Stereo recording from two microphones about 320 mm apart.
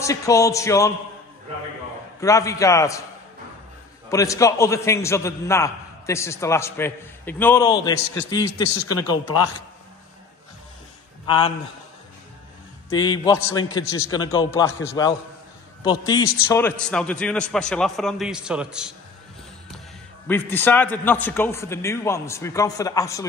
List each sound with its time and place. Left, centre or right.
0.0 s a man's voice: centre
2.1 s a man's voice: centre
4.1 s a man's voice: centre
11.2 s a man's voice: centre
12.9 s a man's voice: centre
20.2 s a man's voice: centre